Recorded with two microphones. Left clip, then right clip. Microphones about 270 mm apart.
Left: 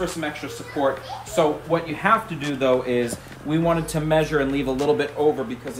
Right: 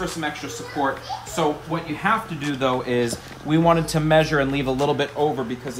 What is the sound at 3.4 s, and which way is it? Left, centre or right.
A man's voice, right.